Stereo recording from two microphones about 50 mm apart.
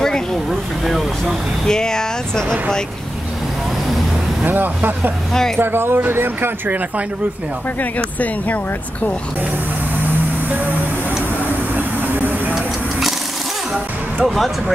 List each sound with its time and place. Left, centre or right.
0.8 s speech: centre
1.7 s speech: centre
4.5 s speech: right
7.8 s speech: left
11.7 s vehicle: right
14.2 s speech: centre